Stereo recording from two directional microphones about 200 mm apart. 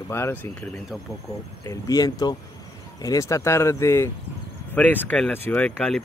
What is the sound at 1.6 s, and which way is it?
Speech, 20° left (ahead or behind).